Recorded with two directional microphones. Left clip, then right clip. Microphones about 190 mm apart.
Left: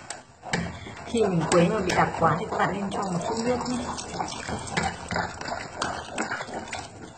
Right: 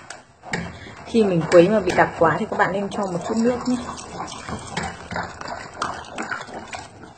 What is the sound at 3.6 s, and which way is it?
Speech, 45° right (ahead or behind).